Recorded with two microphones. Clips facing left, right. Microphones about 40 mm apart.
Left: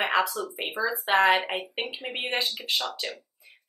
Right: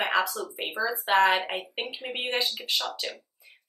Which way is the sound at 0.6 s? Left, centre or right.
Centre.